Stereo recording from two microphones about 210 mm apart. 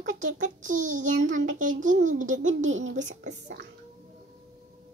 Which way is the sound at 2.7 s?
65° right (ahead or behind).